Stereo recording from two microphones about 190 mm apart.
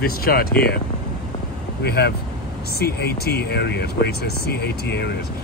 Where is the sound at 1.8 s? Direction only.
60° left (ahead or behind).